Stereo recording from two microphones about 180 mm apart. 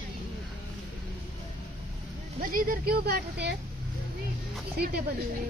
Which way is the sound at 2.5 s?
55° right (ahead or behind).